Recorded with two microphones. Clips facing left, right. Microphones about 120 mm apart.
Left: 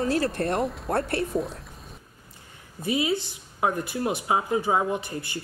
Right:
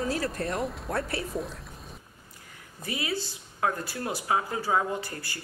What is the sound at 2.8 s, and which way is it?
Speech, 20° left (ahead or behind).